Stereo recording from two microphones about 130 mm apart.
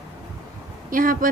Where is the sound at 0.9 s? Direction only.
90° right.